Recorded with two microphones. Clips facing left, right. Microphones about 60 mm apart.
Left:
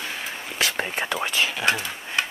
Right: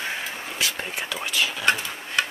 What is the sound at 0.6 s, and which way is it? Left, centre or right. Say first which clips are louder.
Whispering: left 4 dB; left.